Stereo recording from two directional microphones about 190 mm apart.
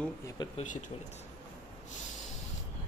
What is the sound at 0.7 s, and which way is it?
Speech, 40° left (ahead or behind).